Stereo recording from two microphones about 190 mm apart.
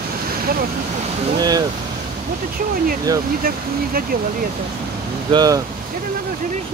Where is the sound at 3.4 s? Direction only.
50° right (ahead or behind).